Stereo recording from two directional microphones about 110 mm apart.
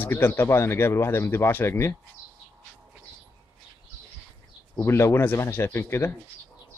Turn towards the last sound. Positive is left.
turn(degrees=20)  # may be behind; listen again after turning